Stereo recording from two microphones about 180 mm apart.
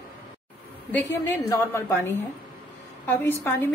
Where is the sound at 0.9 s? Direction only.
15° left (ahead or behind).